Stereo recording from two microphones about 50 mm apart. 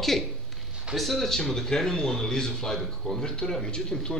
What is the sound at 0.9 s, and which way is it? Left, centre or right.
A man's voice, centre.